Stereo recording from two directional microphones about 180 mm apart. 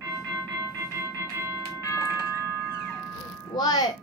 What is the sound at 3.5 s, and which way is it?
Speech, 20° left (ahead or behind).